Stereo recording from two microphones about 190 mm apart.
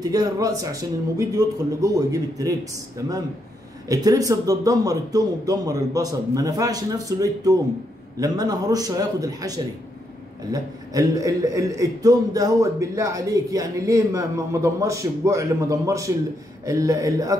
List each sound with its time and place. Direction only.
0.0 s speech: 20° right (ahead or behind)
3.9 s a man's voice: 20° right (ahead or behind)